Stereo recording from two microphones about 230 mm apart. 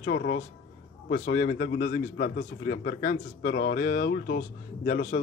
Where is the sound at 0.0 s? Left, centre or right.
Left.